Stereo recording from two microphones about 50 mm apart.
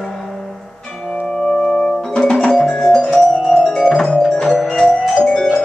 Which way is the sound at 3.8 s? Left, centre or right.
Centre.